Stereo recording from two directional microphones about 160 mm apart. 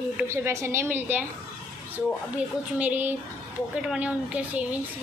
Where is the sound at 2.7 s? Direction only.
10° right (ahead or behind).